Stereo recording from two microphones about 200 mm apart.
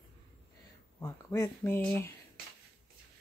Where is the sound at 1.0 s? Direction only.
15° left (ahead or behind).